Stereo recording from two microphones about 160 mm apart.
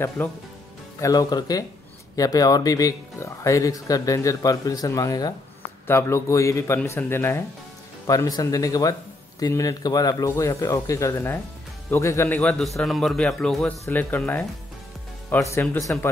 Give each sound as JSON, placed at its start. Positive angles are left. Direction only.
{"t": 0.2, "sound": "a man's voice", "side_deg": 10}
{"t": 1.0, "sound": "a man's voice", "side_deg": 25}